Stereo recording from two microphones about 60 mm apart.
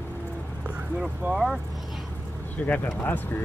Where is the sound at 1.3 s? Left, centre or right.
Centre.